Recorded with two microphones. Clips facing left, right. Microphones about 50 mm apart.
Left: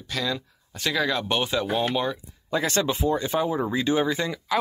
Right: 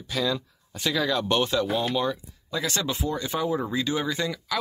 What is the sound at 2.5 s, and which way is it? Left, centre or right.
Speech, left.